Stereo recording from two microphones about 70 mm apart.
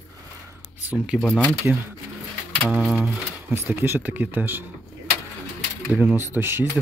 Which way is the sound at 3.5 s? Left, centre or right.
Right.